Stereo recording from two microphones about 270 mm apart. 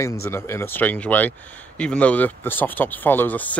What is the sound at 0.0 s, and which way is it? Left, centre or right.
Speech, centre.